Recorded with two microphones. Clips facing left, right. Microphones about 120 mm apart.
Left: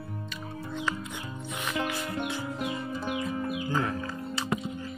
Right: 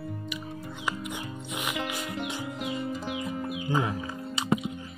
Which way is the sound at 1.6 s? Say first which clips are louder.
Left 1 dB; 15° right (ahead or behind).